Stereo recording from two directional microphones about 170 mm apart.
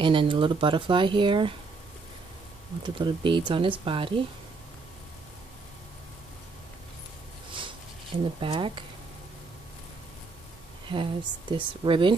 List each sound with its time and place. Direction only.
0.0 s speech: 30° right (ahead or behind)
2.8 s speech: 30° right (ahead or behind)
8.4 s speech: 30° right (ahead or behind)
10.9 s speech: 30° right (ahead or behind)